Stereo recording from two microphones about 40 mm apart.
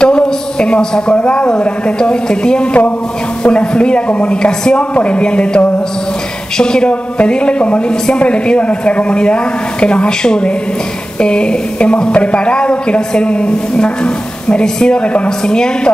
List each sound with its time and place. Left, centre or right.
0.0 s a sound: left
1.1 s a woman's voice: left
6.6 s a woman's voice: left